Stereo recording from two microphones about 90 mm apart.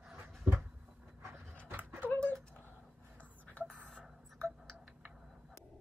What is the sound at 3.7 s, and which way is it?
Tick-tock, 10° left (ahead or behind).